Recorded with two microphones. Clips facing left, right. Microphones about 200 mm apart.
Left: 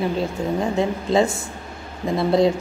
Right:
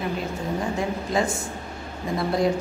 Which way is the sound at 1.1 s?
25° left (ahead or behind).